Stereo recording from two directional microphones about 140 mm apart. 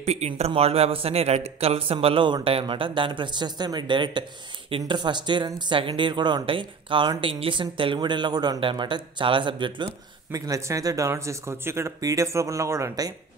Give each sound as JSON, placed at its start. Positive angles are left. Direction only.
{"t": 0.0, "sound": "a man's voice", "side_deg": -50}